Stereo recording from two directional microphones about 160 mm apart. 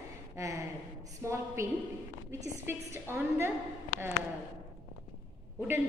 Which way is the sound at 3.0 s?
15° right (ahead or behind).